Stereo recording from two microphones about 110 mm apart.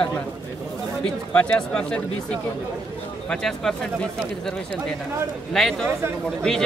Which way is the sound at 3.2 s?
5° left (ahead or behind).